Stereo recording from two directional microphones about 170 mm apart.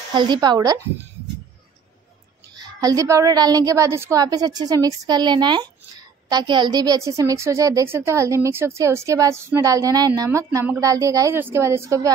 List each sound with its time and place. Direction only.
0.1 s a woman's voice: 25° right (ahead or behind)
2.6 s a woman's voice: 20° right (ahead or behind)